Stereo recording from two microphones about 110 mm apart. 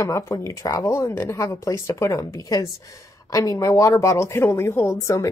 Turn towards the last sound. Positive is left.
turn(degrees=30)  # may be behind; listen again after turning